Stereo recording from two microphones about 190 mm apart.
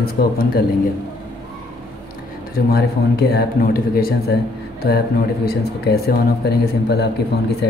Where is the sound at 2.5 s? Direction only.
55° left (ahead or behind).